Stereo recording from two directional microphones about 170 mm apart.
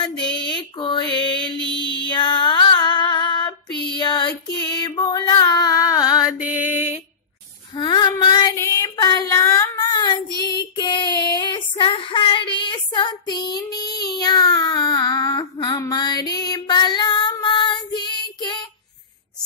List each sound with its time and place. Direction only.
0.0 s music: 25° left (ahead or behind)
4.6 s a sound: 25° left (ahead or behind)
6.3 s mantra: 10° right (ahead or behind)
7.7 s child singing: 25° left (ahead or behind)